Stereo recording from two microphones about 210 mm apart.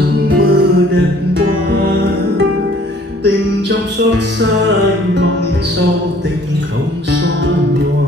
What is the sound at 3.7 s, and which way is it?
Music, 55° right (ahead or behind).